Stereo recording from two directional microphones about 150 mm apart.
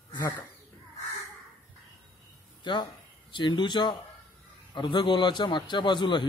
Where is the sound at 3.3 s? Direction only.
30° left (ahead or behind).